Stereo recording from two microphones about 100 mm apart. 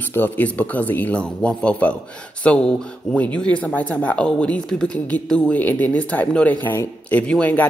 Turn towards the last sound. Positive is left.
turn(degrees=15)  # may be behind; listen again after turning